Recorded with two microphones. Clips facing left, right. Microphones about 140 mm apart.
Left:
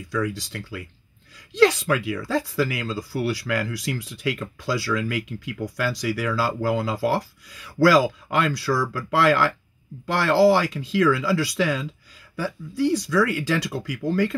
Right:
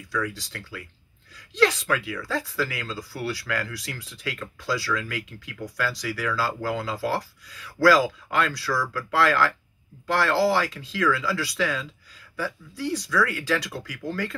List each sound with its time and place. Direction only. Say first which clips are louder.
0.1 s speech: left 4 dB; 20° left (ahead or behind)